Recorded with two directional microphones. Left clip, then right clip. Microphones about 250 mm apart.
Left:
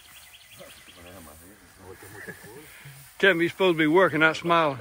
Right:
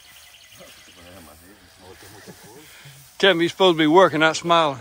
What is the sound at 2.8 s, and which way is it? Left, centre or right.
Speech, centre.